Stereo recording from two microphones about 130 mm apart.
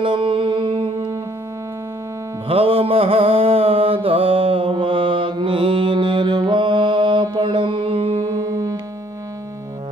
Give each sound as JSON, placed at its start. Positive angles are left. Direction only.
{"t": 0.0, "sound": "music", "side_deg": -40}
{"t": 2.4, "sound": "music", "side_deg": -45}
{"t": 8.4, "sound": "music", "side_deg": -25}